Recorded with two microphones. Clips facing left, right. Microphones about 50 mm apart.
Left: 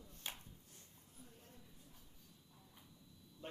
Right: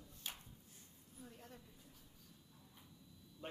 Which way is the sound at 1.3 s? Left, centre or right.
Right.